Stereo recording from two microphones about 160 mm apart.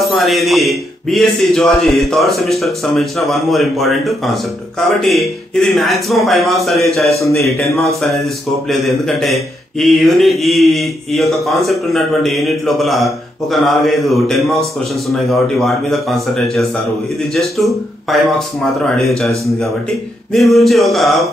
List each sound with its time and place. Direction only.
0.1 s a man's voice: centre (ahead or behind)
20.3 s a man's voice: centre (ahead or behind)